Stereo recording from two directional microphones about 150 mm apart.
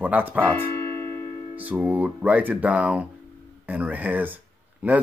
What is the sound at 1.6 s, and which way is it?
Speech, 10° right (ahead or behind).